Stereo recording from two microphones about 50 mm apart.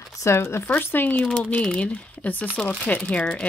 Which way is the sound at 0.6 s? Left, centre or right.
Left.